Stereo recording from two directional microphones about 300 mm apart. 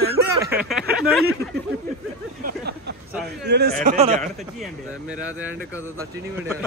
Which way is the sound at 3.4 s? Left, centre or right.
Right.